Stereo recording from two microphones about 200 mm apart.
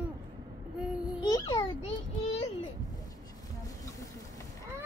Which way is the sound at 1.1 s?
20° left (ahead or behind).